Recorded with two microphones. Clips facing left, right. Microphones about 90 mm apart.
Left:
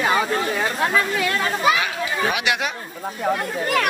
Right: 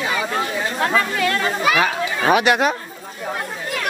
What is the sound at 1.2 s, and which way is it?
Speech, 20° left (ahead or behind).